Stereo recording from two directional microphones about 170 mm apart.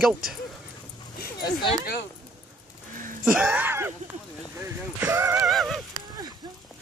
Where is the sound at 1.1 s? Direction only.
60° left (ahead or behind).